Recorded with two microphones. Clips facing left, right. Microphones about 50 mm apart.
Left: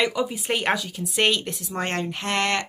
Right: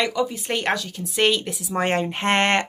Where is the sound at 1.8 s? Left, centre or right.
Centre.